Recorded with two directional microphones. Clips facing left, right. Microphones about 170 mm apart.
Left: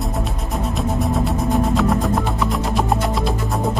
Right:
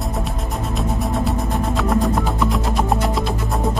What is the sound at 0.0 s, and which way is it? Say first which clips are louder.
Music: even; centre (ahead or behind).